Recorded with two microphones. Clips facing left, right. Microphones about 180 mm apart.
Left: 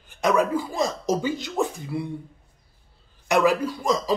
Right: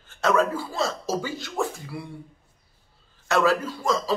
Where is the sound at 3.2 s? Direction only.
15° left (ahead or behind).